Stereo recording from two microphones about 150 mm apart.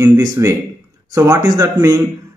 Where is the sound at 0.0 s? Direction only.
20° right (ahead or behind).